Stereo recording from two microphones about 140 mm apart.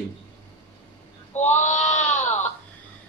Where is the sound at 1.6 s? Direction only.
55° left (ahead or behind).